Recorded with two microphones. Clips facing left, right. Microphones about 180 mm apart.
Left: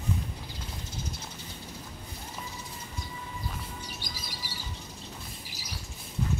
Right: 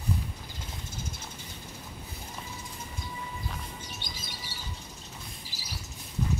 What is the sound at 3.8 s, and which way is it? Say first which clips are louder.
Chirp: left 1 dB; 25° right (ahead or behind).